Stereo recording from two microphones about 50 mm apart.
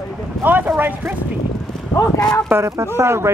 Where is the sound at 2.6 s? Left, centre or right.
Right.